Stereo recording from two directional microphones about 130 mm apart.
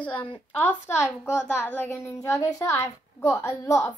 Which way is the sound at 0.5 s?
15° left (ahead or behind).